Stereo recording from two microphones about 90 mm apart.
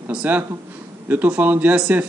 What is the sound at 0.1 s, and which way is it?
Speech, 20° right (ahead or behind).